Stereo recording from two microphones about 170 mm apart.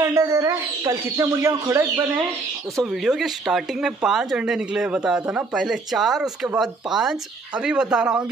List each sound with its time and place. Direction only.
0.0 s speech: 20° right (ahead or behind)
2.8 s speech: centre (ahead or behind)